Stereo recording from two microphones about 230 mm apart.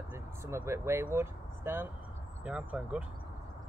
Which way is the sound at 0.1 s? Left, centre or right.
Centre.